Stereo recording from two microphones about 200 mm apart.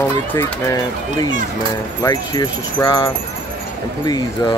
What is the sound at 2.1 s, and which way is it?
Speech, 20° left (ahead or behind).